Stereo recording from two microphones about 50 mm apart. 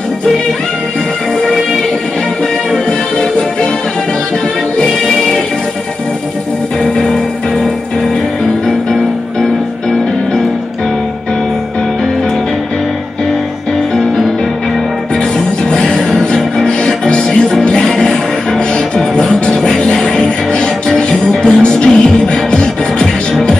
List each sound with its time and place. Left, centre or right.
15.3 s music: centre
17.9 s music: centre